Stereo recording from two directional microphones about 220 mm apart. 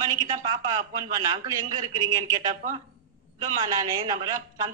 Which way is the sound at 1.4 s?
15° right (ahead or behind).